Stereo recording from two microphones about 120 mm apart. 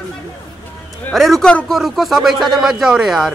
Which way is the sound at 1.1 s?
Centre (ahead or behind).